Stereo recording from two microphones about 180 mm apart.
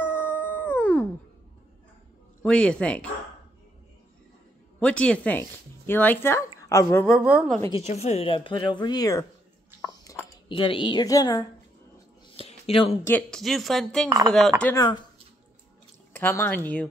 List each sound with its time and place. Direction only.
0.0 s howl: 10° left (ahead or behind)
2.4 s speech: 5° left (ahead or behind)
4.7 s speech: 5° left (ahead or behind)
7.1 s speech: 5° right (ahead or behind)
7.7 s speech: 35° left (ahead or behind); by 9.2 s 20° left (ahead or behind)
9.8 s a sound: 15° left (ahead or behind)
10.5 s speech: 25° left (ahead or behind)
12.4 s a sound: 35° left (ahead or behind)
13.0 s speech: 5° left (ahead or behind)
14.0 s speech: 20° right (ahead or behind)
14.8 s speech: 25° left (ahead or behind)
16.1 s speech: 10° left (ahead or behind)